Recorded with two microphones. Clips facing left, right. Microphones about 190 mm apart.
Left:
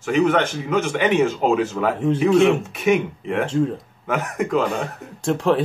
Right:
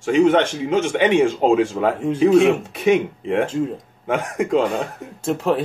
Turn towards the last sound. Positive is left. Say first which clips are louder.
# left 1 dB
turn(degrees=-5)  # may be behind; listen again after turning